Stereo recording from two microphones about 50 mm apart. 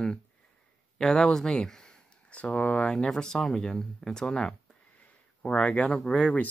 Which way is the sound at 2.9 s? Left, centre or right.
Centre.